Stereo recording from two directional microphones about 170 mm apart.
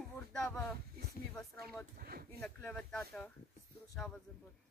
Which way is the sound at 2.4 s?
10° left (ahead or behind).